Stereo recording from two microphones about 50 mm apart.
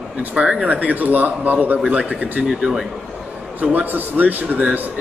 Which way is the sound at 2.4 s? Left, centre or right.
Centre.